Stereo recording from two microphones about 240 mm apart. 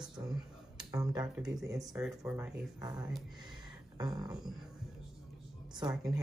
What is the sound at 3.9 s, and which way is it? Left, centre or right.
Music, centre.